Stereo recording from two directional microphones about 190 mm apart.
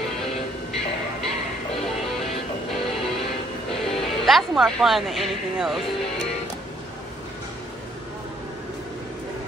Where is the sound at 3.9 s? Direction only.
Centre (ahead or behind).